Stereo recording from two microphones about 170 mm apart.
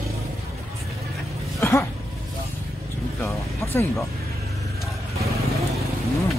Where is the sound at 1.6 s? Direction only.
15° left (ahead or behind).